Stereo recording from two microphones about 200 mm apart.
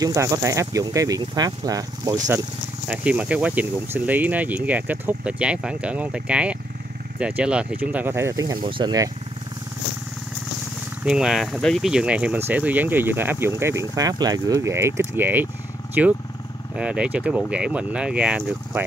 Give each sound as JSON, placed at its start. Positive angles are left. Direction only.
{"t": 0.0, "sound": "speech", "side_deg": -15}
{"t": 11.1, "sound": "speech", "side_deg": -5}